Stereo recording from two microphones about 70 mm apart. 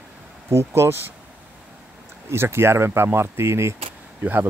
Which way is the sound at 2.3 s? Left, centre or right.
Right.